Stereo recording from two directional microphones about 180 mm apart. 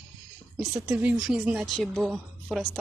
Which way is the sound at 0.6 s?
10° right (ahead or behind).